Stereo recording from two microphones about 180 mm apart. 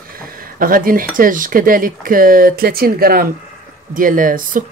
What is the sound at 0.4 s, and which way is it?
Speech, 50° right (ahead or behind).